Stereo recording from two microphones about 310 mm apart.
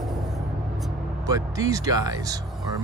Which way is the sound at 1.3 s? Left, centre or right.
Centre.